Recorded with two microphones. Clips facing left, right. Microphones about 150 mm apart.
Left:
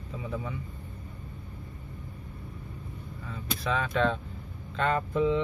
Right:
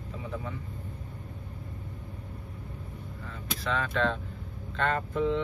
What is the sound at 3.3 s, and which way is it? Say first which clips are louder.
Speech: left 2 dB; 10° left (ahead or behind).